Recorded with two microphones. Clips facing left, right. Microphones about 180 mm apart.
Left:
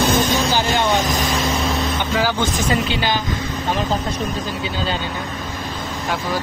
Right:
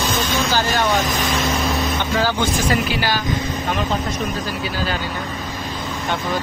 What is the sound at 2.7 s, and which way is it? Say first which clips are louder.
Speech: even; 20° left (ahead or behind).